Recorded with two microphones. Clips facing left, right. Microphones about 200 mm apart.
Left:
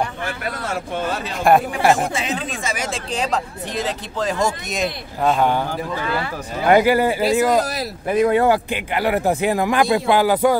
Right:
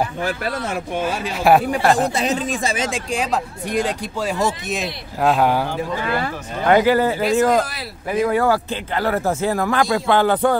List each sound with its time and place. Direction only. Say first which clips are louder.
0.7 s speech: left 1 dB; 10° right (ahead or behind)
1.8 s speech: even; 10° left (ahead or behind)
2.1 s speech: right 4 dB; 45° right (ahead or behind)
2.7 s speech: right 2 dB; 25° right (ahead or behind)
3.1 s speech: right 1 dB; 10° right (ahead or behind)
6.6 s speech: even; 10° left (ahead or behind)
8.2 s speech: left 2 dB; 25° left (ahead or behind)